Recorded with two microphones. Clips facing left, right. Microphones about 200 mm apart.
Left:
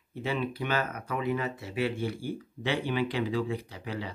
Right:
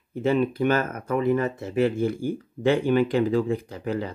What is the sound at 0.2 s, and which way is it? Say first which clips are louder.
Speech: right 10 dB; 45° right (ahead or behind).